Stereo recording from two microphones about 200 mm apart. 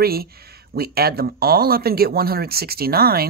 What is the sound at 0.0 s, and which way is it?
Speech, 50° right (ahead or behind).